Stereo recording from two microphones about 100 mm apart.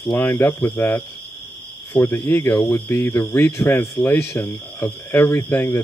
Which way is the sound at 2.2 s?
25° left (ahead or behind).